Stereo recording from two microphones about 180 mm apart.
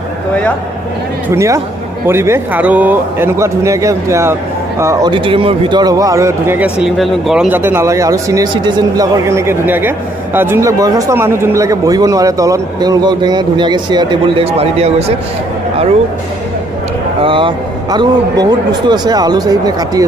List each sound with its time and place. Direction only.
1.3 s speech: 15° right (ahead or behind)
5.1 s speech: 30° right (ahead or behind)
17.2 s speech: 30° right (ahead or behind)